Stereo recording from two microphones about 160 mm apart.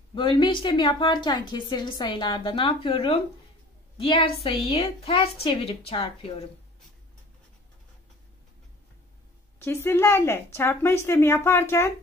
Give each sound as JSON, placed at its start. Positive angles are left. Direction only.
{"t": 0.1, "sound": "a woman's voice", "side_deg": 30}
{"t": 9.6, "sound": "a woman's voice", "side_deg": 15}